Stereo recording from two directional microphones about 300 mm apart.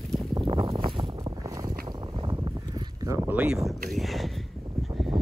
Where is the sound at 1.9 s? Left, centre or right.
Centre.